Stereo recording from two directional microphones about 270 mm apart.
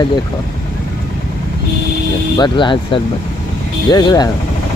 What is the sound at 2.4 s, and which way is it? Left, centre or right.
Speech, centre.